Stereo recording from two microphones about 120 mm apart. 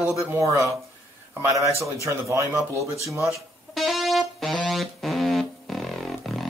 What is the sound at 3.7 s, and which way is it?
Music, centre (ahead or behind).